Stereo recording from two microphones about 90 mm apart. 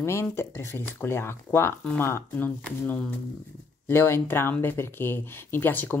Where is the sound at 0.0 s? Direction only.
30° left (ahead or behind).